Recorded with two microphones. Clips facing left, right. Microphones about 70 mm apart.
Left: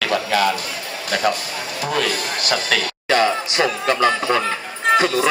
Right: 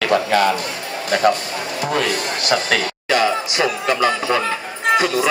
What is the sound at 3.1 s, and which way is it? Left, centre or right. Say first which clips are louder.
Basketball bounce: even; centre.